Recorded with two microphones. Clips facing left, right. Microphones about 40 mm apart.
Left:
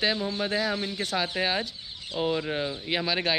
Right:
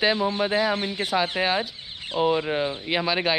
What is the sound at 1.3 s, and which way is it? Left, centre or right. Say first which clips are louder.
Speech: right 4 dB; centre.